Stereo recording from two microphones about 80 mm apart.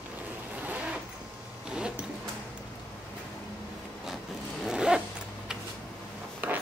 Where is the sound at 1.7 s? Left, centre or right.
Centre.